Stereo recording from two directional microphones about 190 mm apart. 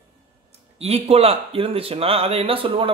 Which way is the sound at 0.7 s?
35° right (ahead or behind).